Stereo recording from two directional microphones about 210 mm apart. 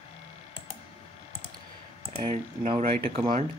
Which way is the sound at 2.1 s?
30° right (ahead or behind).